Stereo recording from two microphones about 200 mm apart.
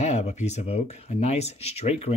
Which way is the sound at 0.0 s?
35° left (ahead or behind).